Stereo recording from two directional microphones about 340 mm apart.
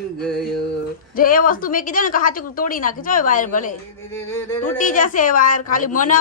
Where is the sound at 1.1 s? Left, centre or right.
Left.